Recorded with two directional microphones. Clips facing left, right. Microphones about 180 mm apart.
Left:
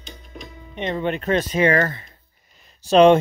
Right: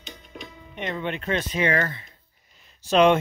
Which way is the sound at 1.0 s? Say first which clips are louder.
Left 6 dB; 45° left (ahead or behind).